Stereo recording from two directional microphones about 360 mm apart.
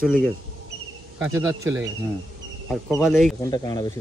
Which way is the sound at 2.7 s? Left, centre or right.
Centre.